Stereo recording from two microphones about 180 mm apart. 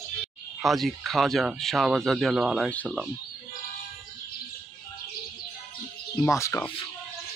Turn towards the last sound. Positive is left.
turn(degrees=15)  # may be behind; listen again after turning